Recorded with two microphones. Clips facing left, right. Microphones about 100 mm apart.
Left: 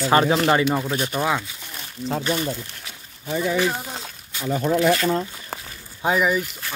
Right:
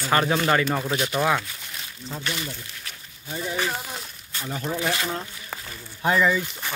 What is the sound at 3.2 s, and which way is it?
Speech, 75° left (ahead or behind).